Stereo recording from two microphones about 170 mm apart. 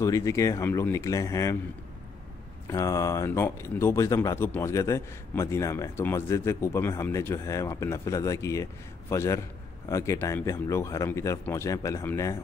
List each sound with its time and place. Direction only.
0.0 s speech: 20° left (ahead or behind)
2.7 s speech: 20° left (ahead or behind)